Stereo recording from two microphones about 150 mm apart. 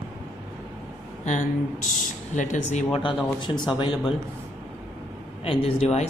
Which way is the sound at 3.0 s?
35° left (ahead or behind).